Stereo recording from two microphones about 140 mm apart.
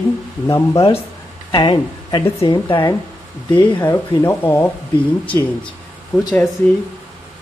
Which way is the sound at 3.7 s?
20° left (ahead or behind).